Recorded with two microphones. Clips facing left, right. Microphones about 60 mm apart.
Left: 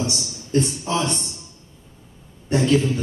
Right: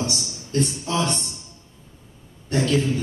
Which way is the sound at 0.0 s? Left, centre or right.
Left.